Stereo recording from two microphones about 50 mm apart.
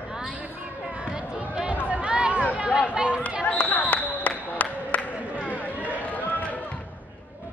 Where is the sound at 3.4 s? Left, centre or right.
Left.